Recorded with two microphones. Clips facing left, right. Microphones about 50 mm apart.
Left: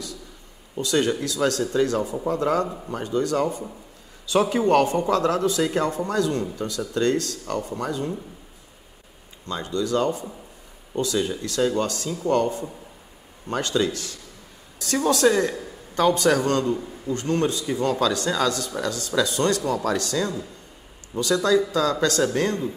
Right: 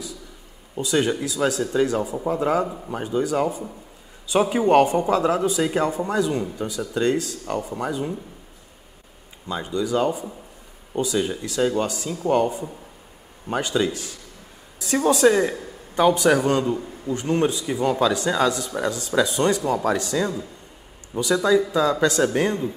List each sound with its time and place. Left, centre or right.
0.7 s a man's voice: centre
9.5 s a man's voice: centre